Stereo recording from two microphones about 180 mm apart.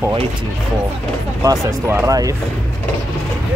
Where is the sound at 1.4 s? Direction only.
20° right (ahead or behind).